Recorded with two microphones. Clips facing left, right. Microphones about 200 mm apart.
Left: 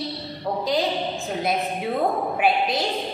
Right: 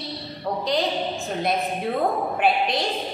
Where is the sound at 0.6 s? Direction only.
Centre (ahead or behind).